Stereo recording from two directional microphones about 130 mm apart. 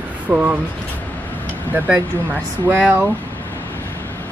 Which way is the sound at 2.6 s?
20° right (ahead or behind).